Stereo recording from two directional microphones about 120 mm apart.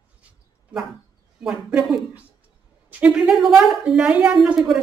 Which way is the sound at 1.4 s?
5° right (ahead or behind).